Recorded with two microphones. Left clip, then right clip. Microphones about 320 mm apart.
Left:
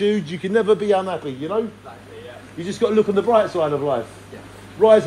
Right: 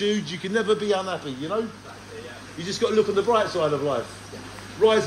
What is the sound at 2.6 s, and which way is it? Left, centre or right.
Speech, centre.